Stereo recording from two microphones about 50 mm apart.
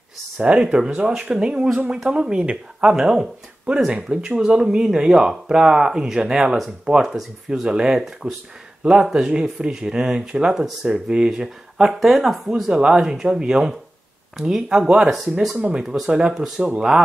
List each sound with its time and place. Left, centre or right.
0.4 s speech: right
16.1 s speech: centre